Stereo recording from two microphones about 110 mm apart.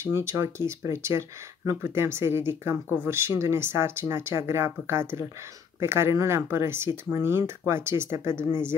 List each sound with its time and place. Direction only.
0.0 s speech: 25° right (ahead or behind)